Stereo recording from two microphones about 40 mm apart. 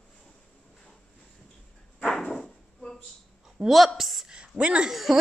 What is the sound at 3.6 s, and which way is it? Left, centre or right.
Speech, right.